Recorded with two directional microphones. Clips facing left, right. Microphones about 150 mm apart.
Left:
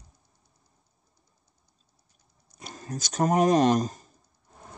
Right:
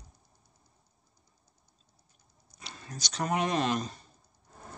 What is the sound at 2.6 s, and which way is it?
Speech, 40° left (ahead or behind).